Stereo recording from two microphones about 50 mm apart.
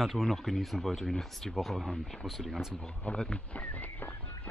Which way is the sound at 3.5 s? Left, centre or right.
Left.